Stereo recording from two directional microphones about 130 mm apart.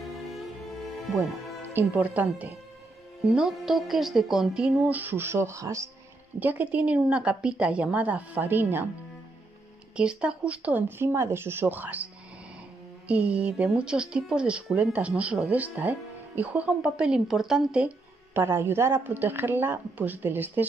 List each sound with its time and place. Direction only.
1.7 s speech: 15° right (ahead or behind)
6.4 s speech: 10° right (ahead or behind)
9.9 s speech: 10° right (ahead or behind)
13.1 s speech: 10° right (ahead or behind)
18.4 s speech: 20° right (ahead or behind)